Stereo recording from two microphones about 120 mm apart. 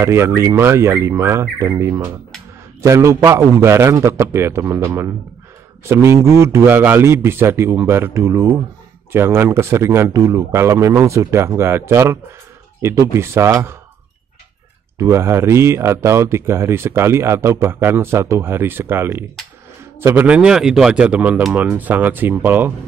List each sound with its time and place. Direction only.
0.0 s speech: 20° right (ahead or behind)
15.0 s a man's voice: 20° right (ahead or behind)